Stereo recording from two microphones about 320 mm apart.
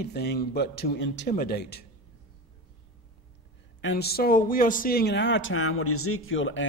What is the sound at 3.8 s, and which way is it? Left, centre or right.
Speech, left.